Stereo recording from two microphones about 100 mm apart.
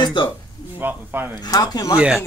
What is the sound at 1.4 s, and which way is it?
Speech, 40° left (ahead or behind).